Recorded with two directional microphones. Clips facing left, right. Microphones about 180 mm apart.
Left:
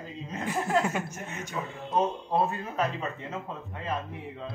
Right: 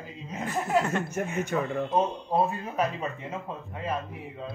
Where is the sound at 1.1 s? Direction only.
60° right (ahead or behind).